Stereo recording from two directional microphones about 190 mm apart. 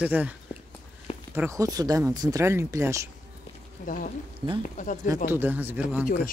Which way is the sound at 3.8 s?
45° left (ahead or behind).